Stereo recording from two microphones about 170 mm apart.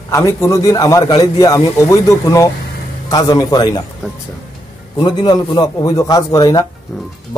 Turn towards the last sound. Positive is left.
turn(degrees=20)  # may be behind; listen again after turning